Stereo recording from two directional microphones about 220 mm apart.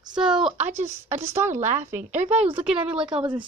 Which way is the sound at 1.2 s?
10° right (ahead or behind).